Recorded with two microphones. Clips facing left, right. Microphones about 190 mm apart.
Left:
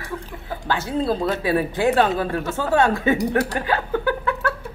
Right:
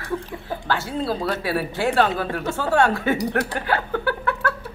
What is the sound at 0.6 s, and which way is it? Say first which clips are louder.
Speech: left 3 dB; 20° left (ahead or behind).